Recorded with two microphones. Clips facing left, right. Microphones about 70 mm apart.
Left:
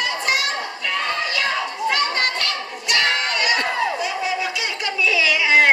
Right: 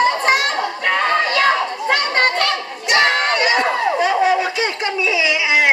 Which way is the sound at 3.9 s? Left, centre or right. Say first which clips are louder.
Right 8 dB; right.